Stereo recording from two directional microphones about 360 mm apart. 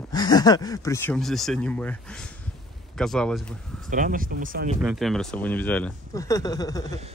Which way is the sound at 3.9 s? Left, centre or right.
Right.